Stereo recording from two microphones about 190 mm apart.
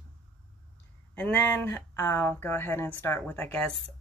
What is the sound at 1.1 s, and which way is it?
Speech, 5° left (ahead or behind).